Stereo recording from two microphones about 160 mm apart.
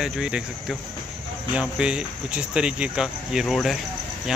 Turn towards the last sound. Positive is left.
turn(degrees=0)  # may be behind; listen again after turning